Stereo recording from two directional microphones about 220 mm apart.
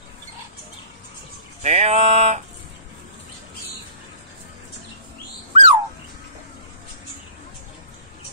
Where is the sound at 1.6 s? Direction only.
30° right (ahead or behind).